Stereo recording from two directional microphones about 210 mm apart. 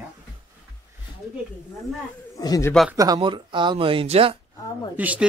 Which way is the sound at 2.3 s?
15° left (ahead or behind).